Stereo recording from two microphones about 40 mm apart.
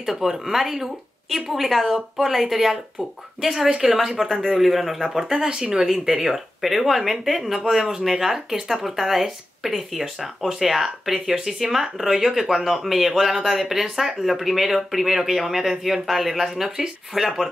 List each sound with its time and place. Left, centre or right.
0.0 s speech: centre